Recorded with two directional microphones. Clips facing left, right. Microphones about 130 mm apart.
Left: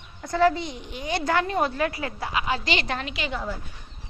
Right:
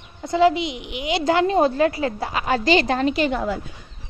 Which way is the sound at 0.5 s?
80° right.